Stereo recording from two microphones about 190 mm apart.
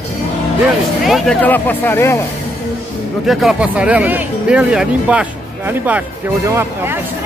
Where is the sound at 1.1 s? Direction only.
5° left (ahead or behind).